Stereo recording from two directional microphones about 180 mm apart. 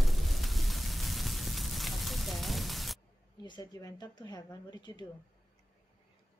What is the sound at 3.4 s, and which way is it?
Speech, 25° left (ahead or behind).